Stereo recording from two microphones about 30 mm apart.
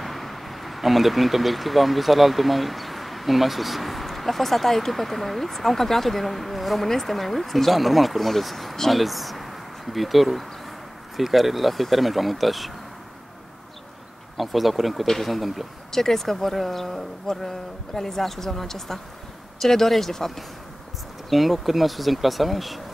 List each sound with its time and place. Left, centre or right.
0.0 s speech: centre
14.3 s speech: centre
15.9 s speech: centre
21.3 s speech: centre